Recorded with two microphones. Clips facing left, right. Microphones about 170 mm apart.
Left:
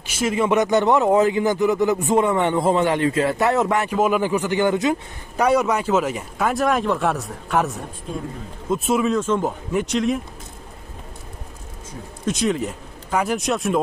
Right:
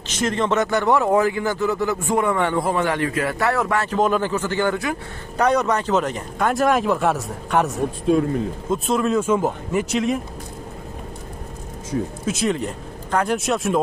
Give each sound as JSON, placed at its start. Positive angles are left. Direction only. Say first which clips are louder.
{"t": 0.0, "sound": "a man's voice", "louder": "left 1 dB", "side_deg": 5}
{"t": 8.1, "sound": "speech", "louder": "right 10 dB", "side_deg": -90}
{"t": 8.6, "sound": "speech", "louder": "left 3 dB", "side_deg": 5}
{"t": 12.3, "sound": "speech", "louder": "left 3 dB", "side_deg": 0}